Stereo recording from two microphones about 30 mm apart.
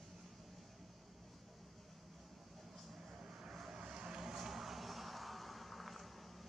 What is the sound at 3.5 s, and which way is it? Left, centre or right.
Vehicle, centre.